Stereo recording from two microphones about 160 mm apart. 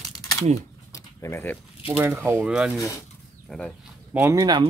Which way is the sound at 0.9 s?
15° left (ahead or behind).